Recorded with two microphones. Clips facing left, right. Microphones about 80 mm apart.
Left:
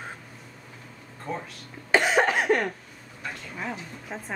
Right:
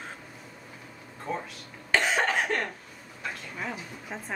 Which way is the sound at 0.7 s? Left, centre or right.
Centre.